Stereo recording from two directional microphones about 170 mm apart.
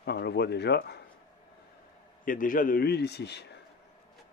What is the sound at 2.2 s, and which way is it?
Speech, 50° left (ahead or behind).